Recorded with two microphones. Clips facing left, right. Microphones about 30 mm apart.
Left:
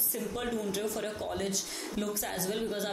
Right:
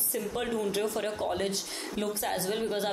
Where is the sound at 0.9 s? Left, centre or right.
Right.